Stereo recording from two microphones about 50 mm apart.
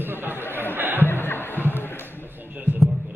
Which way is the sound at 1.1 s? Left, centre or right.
Left.